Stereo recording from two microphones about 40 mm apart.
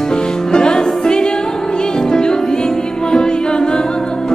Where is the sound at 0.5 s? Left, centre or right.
Centre.